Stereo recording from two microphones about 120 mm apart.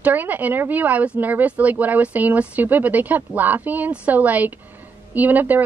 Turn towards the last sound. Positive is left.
turn(degrees=-15)  # may be behind; listen again after turning